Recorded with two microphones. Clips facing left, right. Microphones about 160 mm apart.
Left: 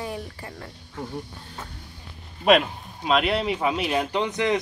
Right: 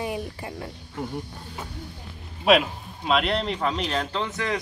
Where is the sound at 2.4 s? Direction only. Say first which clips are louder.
Left 1 dB; centre (ahead or behind).